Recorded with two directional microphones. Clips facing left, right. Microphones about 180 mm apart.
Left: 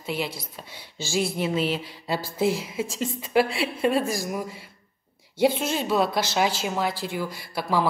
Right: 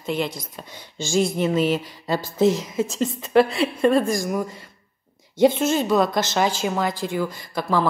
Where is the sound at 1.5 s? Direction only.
45° right (ahead or behind).